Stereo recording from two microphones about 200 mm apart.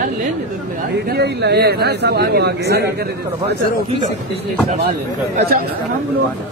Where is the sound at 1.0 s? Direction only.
55° right (ahead or behind).